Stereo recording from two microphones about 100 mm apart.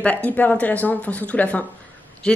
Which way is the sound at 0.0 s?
15° left (ahead or behind).